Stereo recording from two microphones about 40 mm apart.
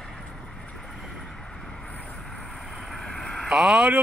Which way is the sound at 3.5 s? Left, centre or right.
Centre.